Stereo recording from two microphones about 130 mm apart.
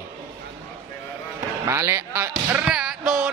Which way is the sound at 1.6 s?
20° right (ahead or behind).